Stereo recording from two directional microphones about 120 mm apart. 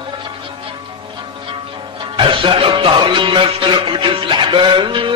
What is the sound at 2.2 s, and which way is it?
Music, 45° right (ahead or behind).